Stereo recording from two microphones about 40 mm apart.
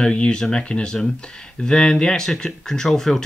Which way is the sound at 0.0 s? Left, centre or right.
Left.